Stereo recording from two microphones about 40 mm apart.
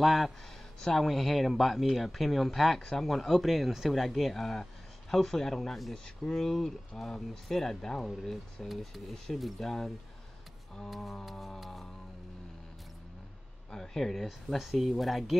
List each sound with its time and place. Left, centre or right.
0.0 s speech: centre
0.7 s speech: centre
1.0 s speech: centre
8.6 s speech: centre
9.4 s speech: centre
11.2 s speech: centre
13.7 s speech: centre
14.2 s speech: centre